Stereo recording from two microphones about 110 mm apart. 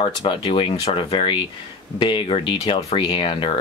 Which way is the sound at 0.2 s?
55° left (ahead or behind).